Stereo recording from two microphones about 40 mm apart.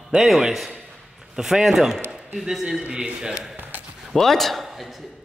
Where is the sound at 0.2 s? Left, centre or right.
Centre.